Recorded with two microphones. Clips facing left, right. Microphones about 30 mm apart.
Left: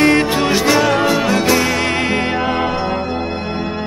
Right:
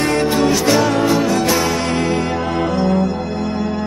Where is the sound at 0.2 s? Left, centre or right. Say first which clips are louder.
Even; left.